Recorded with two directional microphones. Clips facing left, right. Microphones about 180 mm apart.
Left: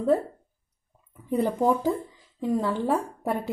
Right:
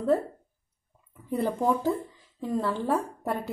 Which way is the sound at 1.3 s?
15° left (ahead or behind).